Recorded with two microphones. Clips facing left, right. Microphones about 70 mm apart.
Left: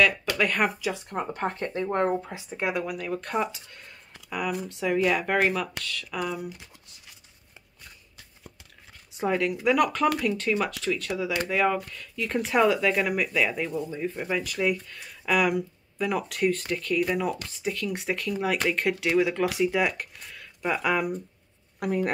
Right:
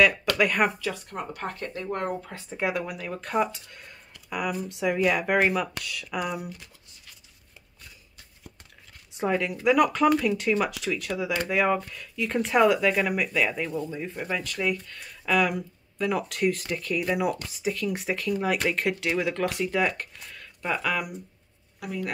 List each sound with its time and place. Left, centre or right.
0.4 s speech: centre
0.7 s speech: centre
2.5 s speech: centre
9.1 s speech: centre
21.7 s speech: left